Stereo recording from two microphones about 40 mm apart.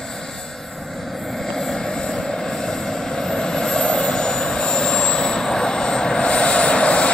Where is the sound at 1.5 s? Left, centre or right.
Centre.